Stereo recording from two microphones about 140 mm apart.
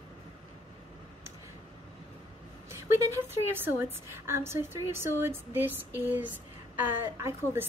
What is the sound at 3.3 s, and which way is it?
A woman's voice, 15° right (ahead or behind).